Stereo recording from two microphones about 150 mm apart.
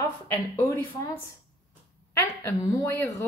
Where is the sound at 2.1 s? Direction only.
20° left (ahead or behind).